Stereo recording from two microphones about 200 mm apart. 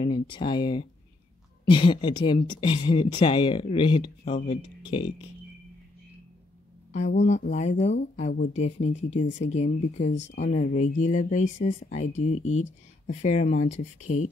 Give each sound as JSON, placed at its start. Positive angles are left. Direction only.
{"t": 0.0, "sound": "speech", "side_deg": 25}
{"t": 6.9, "sound": "speech", "side_deg": 35}